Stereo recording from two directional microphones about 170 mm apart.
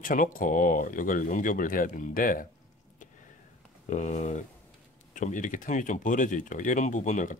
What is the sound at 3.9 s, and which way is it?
Speech, 45° left (ahead or behind).